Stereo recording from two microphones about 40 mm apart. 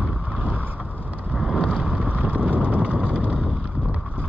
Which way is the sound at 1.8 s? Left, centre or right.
Right.